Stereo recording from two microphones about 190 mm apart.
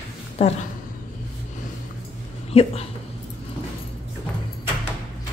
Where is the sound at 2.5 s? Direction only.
35° left (ahead or behind).